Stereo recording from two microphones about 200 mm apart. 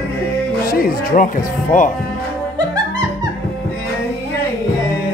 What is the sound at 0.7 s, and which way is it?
Speech, 45° left (ahead or behind).